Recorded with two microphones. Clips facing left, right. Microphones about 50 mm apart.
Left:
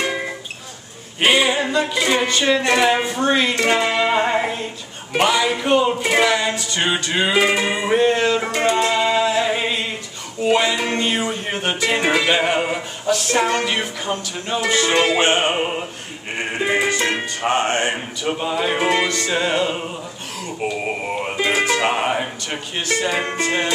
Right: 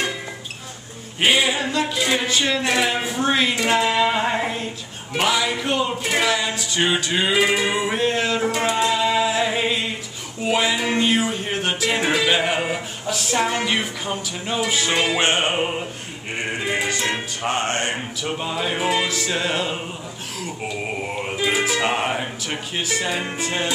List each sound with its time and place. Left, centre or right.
1.2 s music: centre
3.8 s music: centre
15.2 s music: left
16.6 s music: centre
17.4 s music: left
17.9 s music: centre
21.4 s music: centre